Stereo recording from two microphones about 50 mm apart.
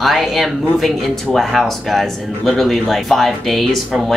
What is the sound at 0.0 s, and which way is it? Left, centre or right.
Speech, centre.